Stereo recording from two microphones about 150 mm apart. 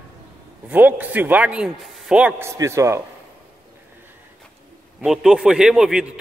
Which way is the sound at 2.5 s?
20° right (ahead or behind).